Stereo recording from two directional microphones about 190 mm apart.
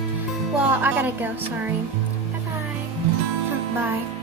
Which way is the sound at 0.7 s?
10° right (ahead or behind).